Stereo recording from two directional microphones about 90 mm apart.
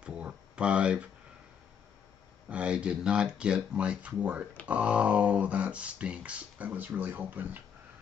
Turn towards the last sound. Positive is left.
turn(degrees=-20)  # may be behind; listen again after turning